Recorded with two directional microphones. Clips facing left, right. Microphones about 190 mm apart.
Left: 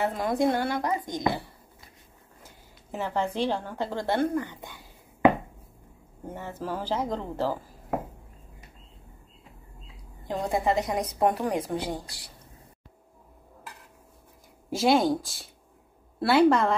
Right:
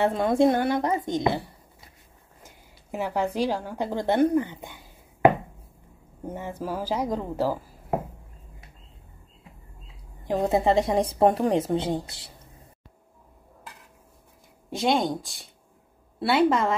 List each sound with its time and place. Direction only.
0.0 s a woman's voice: 25° right (ahead or behind)
2.9 s a woman's voice: 10° right (ahead or behind)
6.2 s a woman's voice: 15° right (ahead or behind)
10.2 s a woman's voice: 20° right (ahead or behind)
14.7 s speech: 5° left (ahead or behind)